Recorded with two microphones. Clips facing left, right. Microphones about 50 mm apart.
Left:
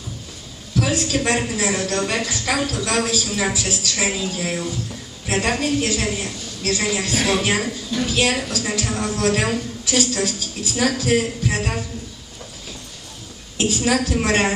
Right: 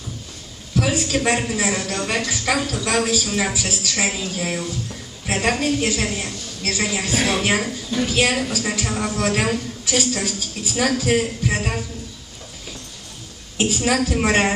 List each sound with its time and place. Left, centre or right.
0.7 s a man's voice: centre
13.6 s a woman's voice: centre